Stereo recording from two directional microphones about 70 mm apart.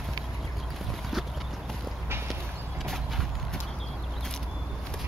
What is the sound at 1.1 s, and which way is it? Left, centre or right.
Clip-clop, centre.